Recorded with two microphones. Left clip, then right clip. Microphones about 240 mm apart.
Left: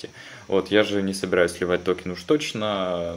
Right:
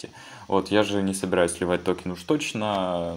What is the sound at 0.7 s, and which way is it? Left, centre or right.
Speech, centre.